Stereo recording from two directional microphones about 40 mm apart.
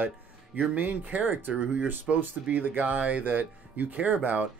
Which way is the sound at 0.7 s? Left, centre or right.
Right.